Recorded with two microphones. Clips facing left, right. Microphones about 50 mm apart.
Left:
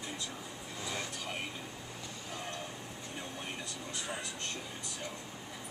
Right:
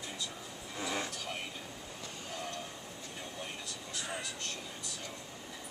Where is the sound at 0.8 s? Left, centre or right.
Right.